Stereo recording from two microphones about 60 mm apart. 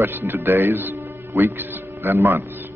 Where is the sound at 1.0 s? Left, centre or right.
Right.